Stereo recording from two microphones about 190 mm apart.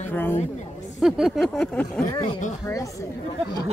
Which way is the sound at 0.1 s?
10° left (ahead or behind).